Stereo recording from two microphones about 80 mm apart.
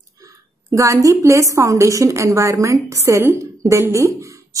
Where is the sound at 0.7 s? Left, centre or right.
Right.